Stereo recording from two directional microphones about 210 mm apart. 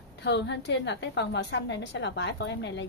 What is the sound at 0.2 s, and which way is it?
A woman's voice, 55° left (ahead or behind).